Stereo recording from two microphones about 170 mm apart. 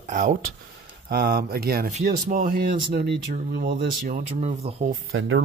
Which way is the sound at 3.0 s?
70° right (ahead or behind).